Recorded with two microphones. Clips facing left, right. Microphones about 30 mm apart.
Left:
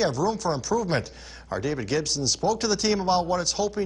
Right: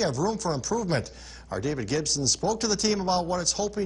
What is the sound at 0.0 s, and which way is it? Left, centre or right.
Speech, centre.